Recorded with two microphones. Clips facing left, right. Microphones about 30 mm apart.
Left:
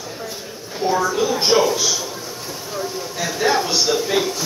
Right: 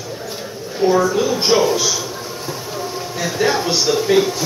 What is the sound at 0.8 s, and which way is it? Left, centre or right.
Speech, centre.